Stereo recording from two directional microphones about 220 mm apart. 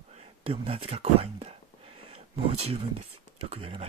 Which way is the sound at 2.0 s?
30° right (ahead or behind).